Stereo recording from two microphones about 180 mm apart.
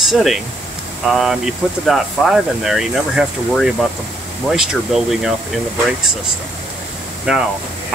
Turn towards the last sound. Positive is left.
turn(degrees=-5)  # may be behind; listen again after turning